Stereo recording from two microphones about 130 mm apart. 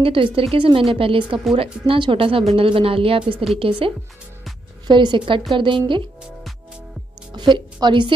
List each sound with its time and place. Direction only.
0.0 s a woman's voice: 45° right (ahead or behind)
7.3 s a woman's voice: 35° right (ahead or behind)